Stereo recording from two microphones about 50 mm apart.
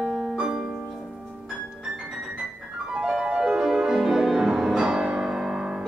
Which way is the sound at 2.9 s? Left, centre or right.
Centre.